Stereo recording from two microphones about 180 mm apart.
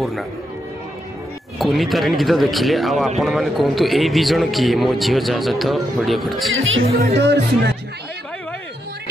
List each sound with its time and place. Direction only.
1.6 s a man's voice: centre (ahead or behind)
6.5 s speech: 90° right
7.0 s speech: 70° right (ahead or behind)